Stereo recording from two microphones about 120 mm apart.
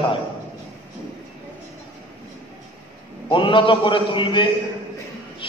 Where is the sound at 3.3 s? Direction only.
45° left (ahead or behind).